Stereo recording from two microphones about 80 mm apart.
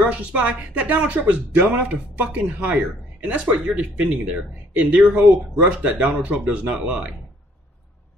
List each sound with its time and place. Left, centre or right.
0.0 s speech: centre